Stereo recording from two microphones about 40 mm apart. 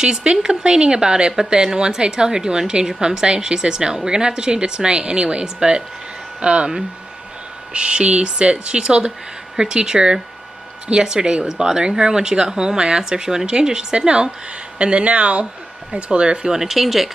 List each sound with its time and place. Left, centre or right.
0.0 s a woman's voice: right
16.5 s speech: centre